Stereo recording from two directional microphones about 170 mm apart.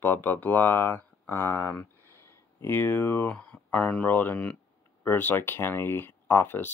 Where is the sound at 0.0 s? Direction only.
10° left (ahead or behind).